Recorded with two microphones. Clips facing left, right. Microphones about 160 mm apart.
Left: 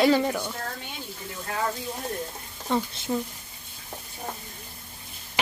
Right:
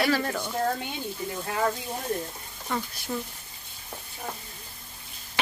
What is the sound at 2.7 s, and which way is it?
Speech, 20° left (ahead or behind).